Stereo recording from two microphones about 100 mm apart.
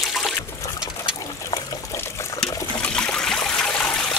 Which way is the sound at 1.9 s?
25° left (ahead or behind).